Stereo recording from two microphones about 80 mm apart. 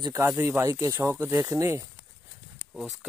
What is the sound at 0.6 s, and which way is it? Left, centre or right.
Speech, right.